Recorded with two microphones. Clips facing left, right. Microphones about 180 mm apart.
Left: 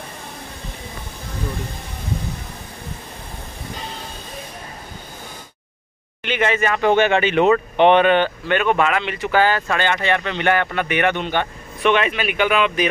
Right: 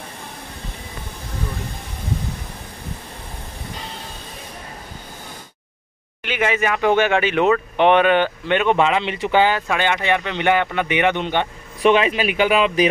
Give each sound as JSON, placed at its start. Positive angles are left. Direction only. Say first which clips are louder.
{"t": 6.2, "sound": "speech", "louder": "left 1 dB", "side_deg": -5}
{"t": 8.5, "sound": "speech", "louder": "right 2 dB", "side_deg": -20}
{"t": 11.8, "sound": "speech", "louder": "right 2 dB", "side_deg": -35}